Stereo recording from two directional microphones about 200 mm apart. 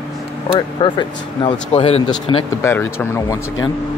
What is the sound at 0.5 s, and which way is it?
Speech, 25° left (ahead or behind).